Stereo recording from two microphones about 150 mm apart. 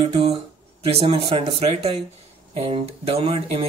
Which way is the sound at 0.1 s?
40° right (ahead or behind).